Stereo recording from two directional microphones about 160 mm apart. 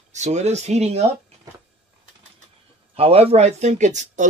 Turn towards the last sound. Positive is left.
turn(degrees=-50)  # may be behind; listen again after turning